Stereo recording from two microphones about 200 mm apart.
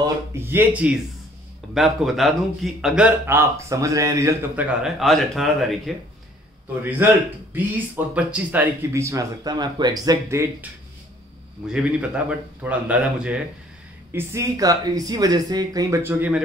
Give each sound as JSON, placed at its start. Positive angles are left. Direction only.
{"t": 0.0, "sound": "a man's voice", "side_deg": -10}
{"t": 6.8, "sound": "speech", "side_deg": -10}
{"t": 11.7, "sound": "a man's voice", "side_deg": -5}